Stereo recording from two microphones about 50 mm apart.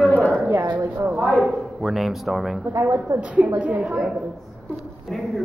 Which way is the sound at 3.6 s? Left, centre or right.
Right.